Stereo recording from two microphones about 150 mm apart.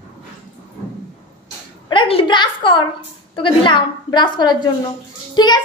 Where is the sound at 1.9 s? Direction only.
35° left (ahead or behind).